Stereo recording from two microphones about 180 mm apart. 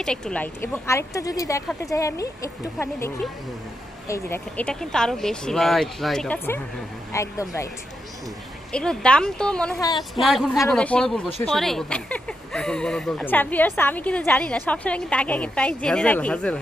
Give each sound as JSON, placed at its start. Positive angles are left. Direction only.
{"t": 0.0, "sound": "speech", "side_deg": 5}
{"t": 4.1, "sound": "speech", "side_deg": 10}
{"t": 8.7, "sound": "speech", "side_deg": 5}
{"t": 9.8, "sound": "speech", "side_deg": 20}
{"t": 10.1, "sound": "speech", "side_deg": 0}